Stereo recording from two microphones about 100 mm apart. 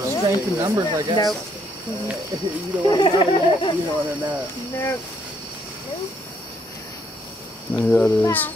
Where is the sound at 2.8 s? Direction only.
50° left (ahead or behind).